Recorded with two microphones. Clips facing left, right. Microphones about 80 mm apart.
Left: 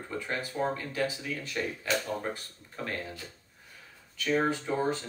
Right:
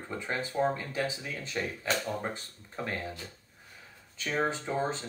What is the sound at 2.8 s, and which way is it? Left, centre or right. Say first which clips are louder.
Speech: right 1 dB; centre.